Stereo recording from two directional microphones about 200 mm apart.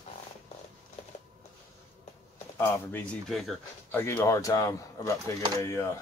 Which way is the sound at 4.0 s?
10° left (ahead or behind).